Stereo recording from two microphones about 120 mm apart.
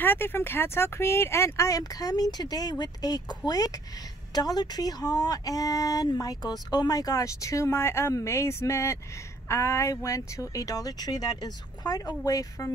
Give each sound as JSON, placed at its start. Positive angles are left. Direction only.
{"t": 0.0, "sound": "speech", "side_deg": 15}